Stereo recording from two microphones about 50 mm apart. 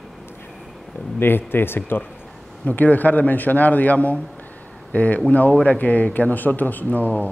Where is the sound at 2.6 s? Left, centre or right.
Left.